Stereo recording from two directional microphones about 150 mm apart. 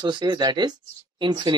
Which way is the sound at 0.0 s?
30° right (ahead or behind).